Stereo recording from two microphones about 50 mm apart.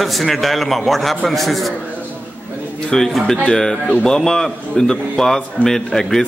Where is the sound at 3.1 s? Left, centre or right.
Centre.